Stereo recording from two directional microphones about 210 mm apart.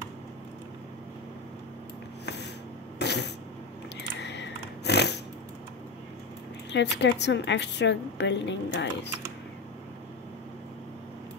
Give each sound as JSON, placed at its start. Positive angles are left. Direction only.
{"t": 3.0, "sound": "cough", "side_deg": 55}
{"t": 4.2, "sound": "a sound", "side_deg": 55}
{"t": 6.7, "sound": "a woman's voice", "side_deg": 55}